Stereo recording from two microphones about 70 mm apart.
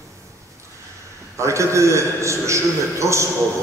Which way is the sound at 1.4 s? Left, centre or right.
Right.